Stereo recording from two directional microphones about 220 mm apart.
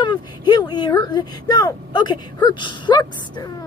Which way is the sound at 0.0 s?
20° left (ahead or behind).